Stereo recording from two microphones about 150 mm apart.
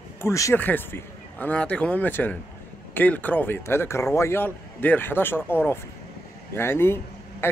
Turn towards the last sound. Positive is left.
turn(degrees=15)  # may be behind; listen again after turning